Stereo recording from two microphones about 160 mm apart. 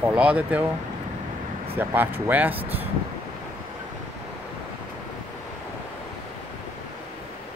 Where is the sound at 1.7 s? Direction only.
10° right (ahead or behind).